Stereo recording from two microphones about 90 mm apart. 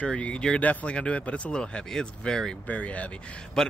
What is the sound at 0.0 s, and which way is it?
Speech, 10° left (ahead or behind).